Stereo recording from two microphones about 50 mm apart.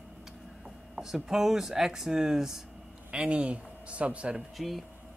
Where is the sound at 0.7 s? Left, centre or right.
Centre.